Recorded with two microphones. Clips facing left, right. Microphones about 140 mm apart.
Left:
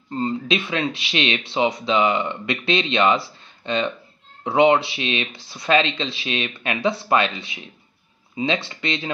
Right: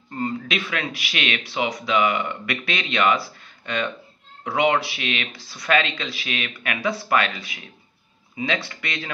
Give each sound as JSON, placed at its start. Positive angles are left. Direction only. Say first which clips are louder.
{"t": 0.1, "sound": "speech", "louder": "left 4 dB", "side_deg": 20}